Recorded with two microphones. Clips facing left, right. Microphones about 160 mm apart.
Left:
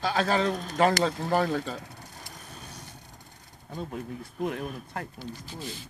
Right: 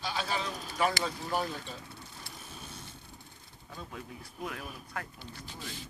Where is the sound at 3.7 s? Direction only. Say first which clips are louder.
Left 9 dB; 40° left (ahead or behind).